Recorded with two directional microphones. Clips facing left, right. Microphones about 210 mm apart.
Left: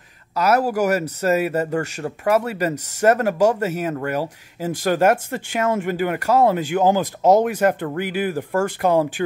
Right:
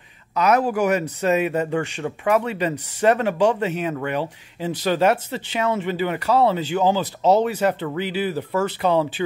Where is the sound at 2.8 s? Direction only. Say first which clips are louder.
Left 2 dB; 45° left (ahead or behind).